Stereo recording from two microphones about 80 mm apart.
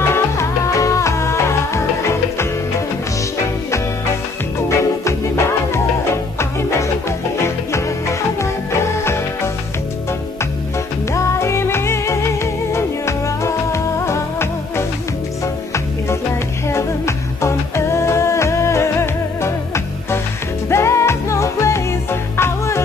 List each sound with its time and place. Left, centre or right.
0.1 s music: left
4.6 s music: left
6.8 s music: left
11.1 s music: left